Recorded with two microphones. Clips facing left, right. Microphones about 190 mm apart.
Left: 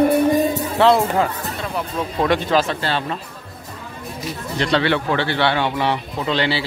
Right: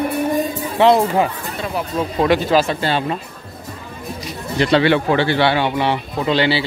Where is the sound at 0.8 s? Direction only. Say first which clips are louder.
Right 2 dB; 15° right (ahead or behind).